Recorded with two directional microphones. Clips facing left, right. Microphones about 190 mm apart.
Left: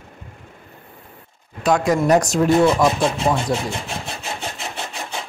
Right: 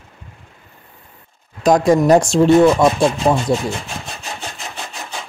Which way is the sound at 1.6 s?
35° right (ahead or behind).